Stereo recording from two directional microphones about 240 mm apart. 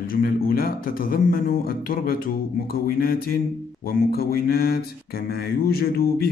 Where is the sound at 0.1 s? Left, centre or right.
Left.